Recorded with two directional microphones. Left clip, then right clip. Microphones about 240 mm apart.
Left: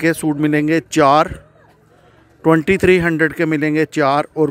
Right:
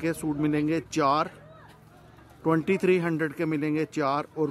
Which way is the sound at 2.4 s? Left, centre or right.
Left.